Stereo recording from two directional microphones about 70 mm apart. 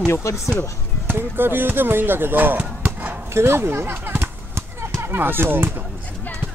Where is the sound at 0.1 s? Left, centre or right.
Left.